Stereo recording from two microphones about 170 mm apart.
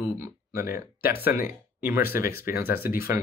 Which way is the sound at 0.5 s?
15° right (ahead or behind).